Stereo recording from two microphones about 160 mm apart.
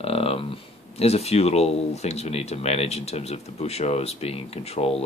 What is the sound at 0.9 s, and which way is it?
Speech, 40° left (ahead or behind).